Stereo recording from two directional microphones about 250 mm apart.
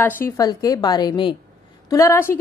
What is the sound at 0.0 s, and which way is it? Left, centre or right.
A woman's voice, centre.